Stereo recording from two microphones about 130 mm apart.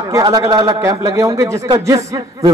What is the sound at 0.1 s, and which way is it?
A man's voice, 30° right (ahead or behind).